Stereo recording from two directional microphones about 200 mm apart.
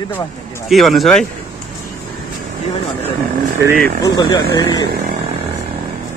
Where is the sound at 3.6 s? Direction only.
50° right (ahead or behind).